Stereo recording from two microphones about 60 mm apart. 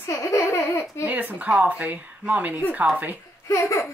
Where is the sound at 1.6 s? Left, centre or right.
Right.